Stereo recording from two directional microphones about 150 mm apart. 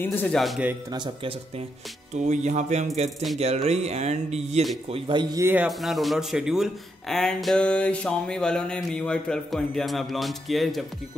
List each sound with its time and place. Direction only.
0.0 s speech: 15° left (ahead or behind)
0.4 s speech: centre (ahead or behind)
0.9 s a man's voice: 30° right (ahead or behind)
2.1 s a man's voice: 50° right (ahead or behind); by 5.4 s 30° right (ahead or behind)
5.4 s speech: 15° right (ahead or behind)
5.7 s speech: centre (ahead or behind)